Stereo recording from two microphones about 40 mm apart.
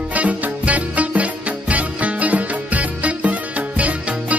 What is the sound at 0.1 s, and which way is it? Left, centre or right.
Music, right.